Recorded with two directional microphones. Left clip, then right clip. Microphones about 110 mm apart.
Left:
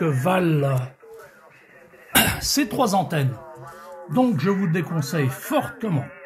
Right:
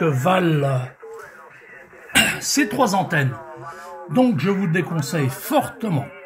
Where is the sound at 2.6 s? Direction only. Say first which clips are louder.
Right 3 dB; 50° left (ahead or behind).